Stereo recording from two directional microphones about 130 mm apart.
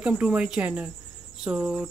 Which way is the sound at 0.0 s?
10° right (ahead or behind).